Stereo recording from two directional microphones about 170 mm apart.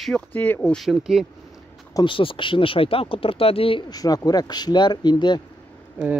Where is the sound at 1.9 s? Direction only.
30° left (ahead or behind).